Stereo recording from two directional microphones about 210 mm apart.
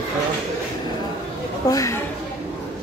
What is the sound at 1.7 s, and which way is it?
Speech, 15° left (ahead or behind).